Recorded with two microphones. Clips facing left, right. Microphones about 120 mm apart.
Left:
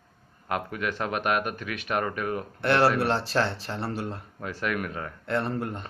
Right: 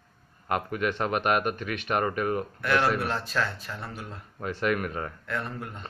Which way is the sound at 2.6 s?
30° left (ahead or behind).